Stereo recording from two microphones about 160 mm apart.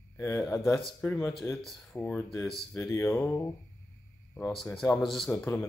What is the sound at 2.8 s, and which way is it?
Speech, 15° left (ahead or behind).